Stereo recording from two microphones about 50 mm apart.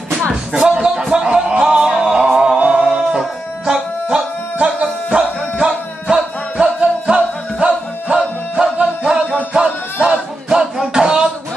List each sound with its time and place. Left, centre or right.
0.2 s music: centre